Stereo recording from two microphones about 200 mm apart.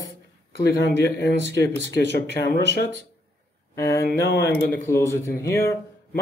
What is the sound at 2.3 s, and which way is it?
Speech, 60° right (ahead or behind).